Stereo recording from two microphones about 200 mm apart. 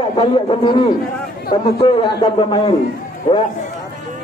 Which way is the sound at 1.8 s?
25° left (ahead or behind).